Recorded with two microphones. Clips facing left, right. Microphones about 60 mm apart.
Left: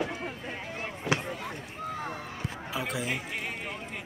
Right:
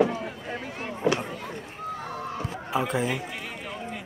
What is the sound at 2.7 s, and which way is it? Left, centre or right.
Speech, right.